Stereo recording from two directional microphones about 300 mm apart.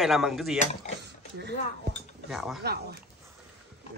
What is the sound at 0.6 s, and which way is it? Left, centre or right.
Speech, left.